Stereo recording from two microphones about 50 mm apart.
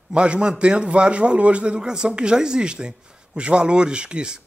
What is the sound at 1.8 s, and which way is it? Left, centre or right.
Speech, centre.